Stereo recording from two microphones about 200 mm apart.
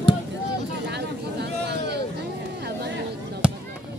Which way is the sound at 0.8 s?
55° right (ahead or behind).